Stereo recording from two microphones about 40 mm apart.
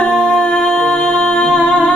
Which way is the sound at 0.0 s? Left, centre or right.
Left.